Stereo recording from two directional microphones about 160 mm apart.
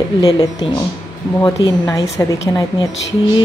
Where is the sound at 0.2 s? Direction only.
25° left (ahead or behind).